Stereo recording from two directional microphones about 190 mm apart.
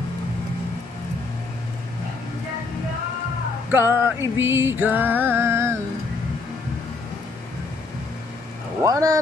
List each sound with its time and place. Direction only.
3.7 s music: 15° right (ahead or behind)
8.8 s music: 15° right (ahead or behind)